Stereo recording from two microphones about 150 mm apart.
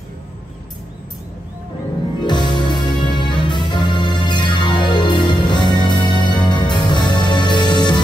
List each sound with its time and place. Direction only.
2.1 s music: 30° left (ahead or behind)